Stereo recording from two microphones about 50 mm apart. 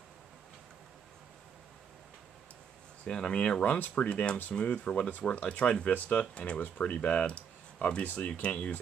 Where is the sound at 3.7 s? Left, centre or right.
Left.